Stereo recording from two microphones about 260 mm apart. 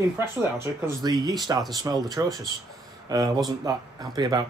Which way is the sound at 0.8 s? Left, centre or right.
Centre.